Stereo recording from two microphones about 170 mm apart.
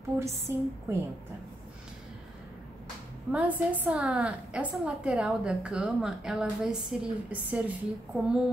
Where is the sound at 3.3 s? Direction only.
10° right (ahead or behind).